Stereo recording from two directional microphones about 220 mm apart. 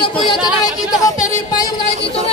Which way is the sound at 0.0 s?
20° left (ahead or behind).